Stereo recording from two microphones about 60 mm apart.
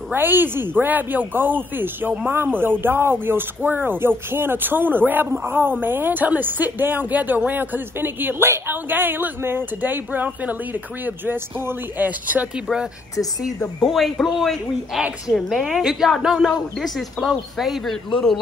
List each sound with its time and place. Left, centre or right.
0.1 s speech: right
13.8 s speech: centre
18.1 s a man's voice: centre